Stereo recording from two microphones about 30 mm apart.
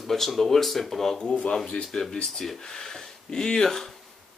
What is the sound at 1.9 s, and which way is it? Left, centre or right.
Speech, left.